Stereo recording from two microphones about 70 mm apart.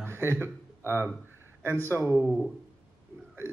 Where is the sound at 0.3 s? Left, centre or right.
Right.